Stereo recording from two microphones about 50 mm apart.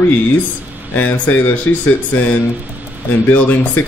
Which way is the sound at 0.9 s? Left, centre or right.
Left.